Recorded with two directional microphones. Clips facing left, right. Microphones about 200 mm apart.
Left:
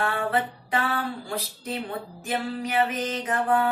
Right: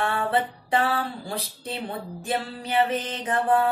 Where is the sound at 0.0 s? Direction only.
30° right (ahead or behind).